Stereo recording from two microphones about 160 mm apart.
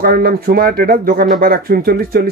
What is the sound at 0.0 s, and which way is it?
Speech, 70° right (ahead or behind).